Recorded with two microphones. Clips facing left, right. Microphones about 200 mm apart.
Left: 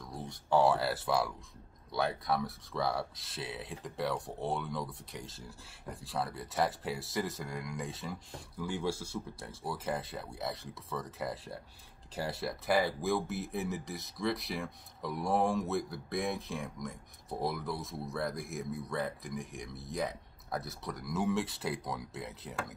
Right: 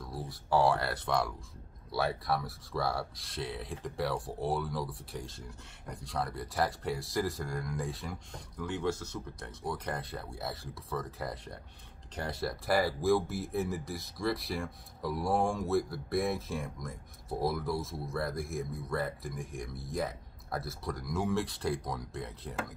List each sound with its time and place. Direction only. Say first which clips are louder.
0.0 s speech: right 2 dB; centre (ahead or behind)